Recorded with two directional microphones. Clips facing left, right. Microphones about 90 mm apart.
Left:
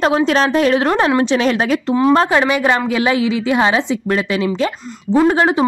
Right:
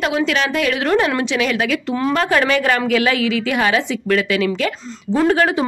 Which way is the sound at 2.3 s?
20° left (ahead or behind).